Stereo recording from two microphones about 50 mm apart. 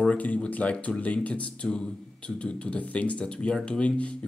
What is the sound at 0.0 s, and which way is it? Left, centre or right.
Speech, left.